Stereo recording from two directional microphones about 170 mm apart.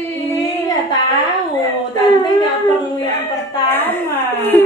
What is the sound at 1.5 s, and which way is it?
A woman's voice, 20° left (ahead or behind).